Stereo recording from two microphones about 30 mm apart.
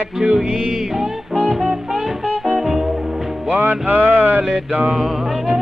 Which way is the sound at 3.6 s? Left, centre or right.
Right.